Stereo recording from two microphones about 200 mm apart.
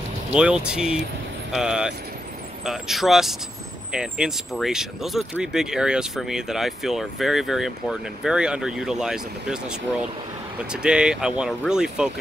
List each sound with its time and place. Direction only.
0.3 s speech: 5° right (ahead or behind)